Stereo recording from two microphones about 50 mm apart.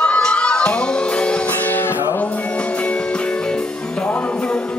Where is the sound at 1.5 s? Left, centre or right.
Left.